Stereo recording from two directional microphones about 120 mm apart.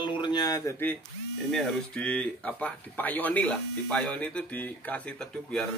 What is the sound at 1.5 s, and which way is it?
Speech, 5° left (ahead or behind).